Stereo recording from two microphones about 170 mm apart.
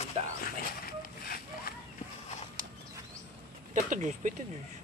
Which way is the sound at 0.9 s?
60° left (ahead or behind).